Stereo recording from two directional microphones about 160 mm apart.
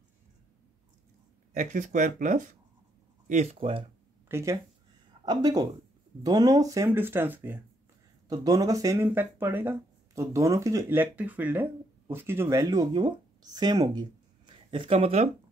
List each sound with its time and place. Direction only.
1.5 s speech: 50° right (ahead or behind)
3.5 s speech: 35° right (ahead or behind)
4.3 s speech: 15° right (ahead or behind)
8.3 s speech: 20° right (ahead or behind); by 15.2 s 40° right (ahead or behind)